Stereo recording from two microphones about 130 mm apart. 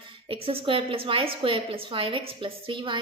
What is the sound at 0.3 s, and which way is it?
A woman's voice, 45° right (ahead or behind).